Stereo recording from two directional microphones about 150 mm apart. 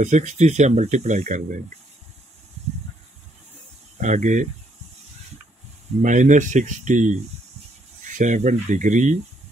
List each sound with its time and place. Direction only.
0.0 s speech: 50° right (ahead or behind)
4.0 s speech: 55° right (ahead or behind)
6.0 s speech: 55° right (ahead or behind)